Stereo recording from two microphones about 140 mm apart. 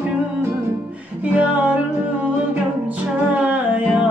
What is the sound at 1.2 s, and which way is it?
Music, 10° right (ahead or behind).